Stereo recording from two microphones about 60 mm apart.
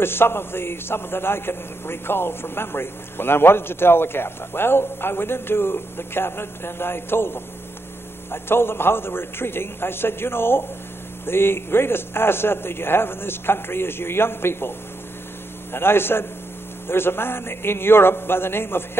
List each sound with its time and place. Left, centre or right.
0.0 s a man's voice: left
15.7 s a man's voice: left